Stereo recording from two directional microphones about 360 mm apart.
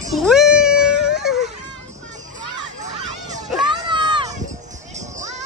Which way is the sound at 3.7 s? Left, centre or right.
Centre.